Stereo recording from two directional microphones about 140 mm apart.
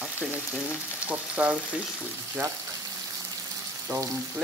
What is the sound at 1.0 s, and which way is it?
Frying, 10° right (ahead or behind).